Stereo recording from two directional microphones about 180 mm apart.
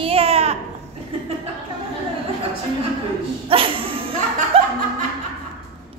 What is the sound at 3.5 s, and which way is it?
Music, 30° right (ahead or behind).